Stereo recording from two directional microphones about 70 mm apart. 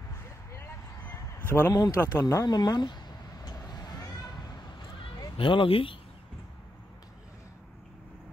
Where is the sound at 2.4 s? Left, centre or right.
Left.